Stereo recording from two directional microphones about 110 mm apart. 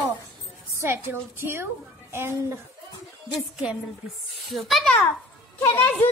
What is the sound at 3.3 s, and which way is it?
A woman's voice, 10° right (ahead or behind).